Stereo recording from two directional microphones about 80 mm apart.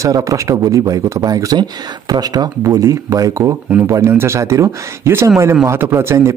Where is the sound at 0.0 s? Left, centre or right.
Right.